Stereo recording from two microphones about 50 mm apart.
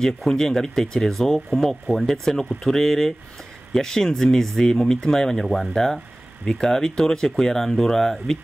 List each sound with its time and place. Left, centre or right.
0.3 s speech: centre